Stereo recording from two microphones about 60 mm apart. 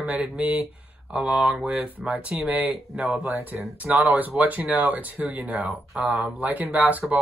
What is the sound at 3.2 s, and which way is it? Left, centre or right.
Speech, right.